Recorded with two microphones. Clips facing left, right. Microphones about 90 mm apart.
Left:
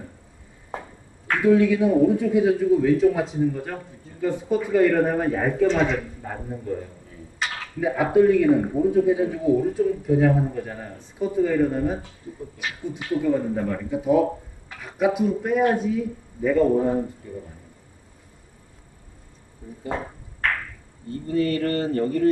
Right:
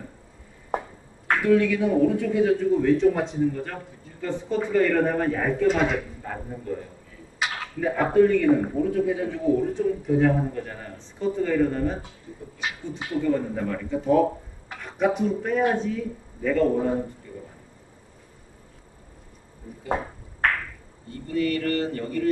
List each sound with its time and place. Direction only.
1.4 s speech: 15° left (ahead or behind)
5.7 s speech: 5° right (ahead or behind)
6.2 s speech: 10° left (ahead or behind)
7.4 s a sound: 5° right (ahead or behind)
7.8 s speech: 5° left (ahead or behind)
13.2 s speech: 10° left (ahead or behind)
21.1 s speech: 30° left (ahead or behind)